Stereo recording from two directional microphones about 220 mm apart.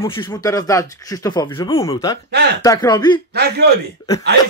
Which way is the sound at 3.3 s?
50° right (ahead or behind).